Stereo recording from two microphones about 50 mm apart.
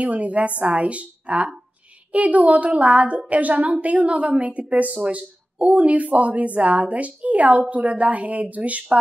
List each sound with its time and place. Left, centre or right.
0.0 s a woman's voice: right